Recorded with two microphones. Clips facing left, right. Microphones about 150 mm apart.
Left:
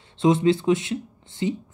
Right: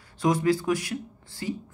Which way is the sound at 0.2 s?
25° left (ahead or behind).